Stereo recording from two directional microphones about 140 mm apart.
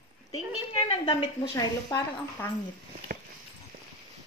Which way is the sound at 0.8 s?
45° left (ahead or behind).